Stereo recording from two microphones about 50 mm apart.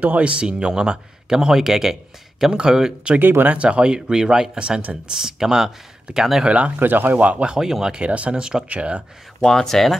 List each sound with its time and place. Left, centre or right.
0.2 s speech: right
3.2 s speech: right
3.5 s speech: right; by 6.4 s centre
6.4 s speech: right
6.8 s speech: right
7.2 s speech: right
7.5 s speech: centre
8.0 s speech: right
9.4 s speech: centre